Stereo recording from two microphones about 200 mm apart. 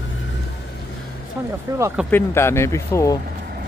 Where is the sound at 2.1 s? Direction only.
10° left (ahead or behind).